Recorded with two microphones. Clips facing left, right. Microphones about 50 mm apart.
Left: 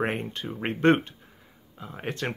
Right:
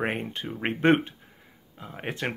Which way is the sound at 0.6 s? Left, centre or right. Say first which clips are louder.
Even; centre.